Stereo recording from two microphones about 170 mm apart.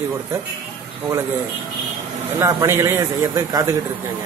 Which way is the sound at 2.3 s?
15° right (ahead or behind).